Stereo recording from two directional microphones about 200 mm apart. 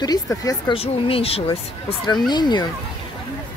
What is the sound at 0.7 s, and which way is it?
Speech, 30° left (ahead or behind).